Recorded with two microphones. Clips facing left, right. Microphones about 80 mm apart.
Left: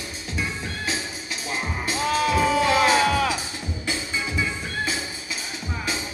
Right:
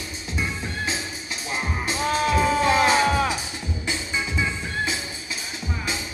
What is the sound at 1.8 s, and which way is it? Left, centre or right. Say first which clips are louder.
Music: left 1 dB; right.